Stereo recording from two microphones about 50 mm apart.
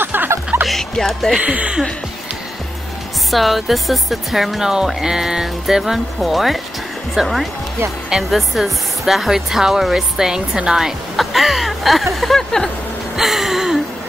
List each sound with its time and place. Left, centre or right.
0.0 s music: right
0.7 s music: centre
1.4 s speech: right
3.3 s speech: centre
11.1 s speech: centre
13.1 s gasp: centre